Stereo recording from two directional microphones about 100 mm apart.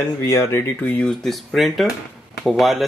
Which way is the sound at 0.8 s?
15° left (ahead or behind).